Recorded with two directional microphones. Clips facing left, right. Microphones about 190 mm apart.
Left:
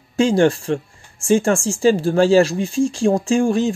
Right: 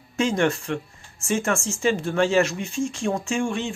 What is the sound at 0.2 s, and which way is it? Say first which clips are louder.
Speech: left 7 dB; 30° left (ahead or behind).